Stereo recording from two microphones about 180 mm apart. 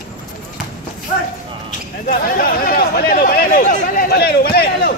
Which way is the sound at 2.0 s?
55° left (ahead or behind).